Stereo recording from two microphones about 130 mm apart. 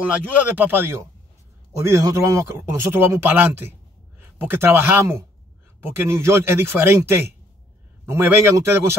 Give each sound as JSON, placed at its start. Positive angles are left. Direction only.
{"t": 0.1, "sound": "a man's voice", "side_deg": -15}